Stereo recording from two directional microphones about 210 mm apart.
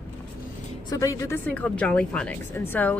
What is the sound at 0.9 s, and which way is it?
Speech, 15° left (ahead or behind).